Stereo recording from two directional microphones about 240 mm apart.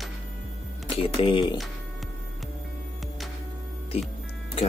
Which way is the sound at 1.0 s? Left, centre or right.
Left.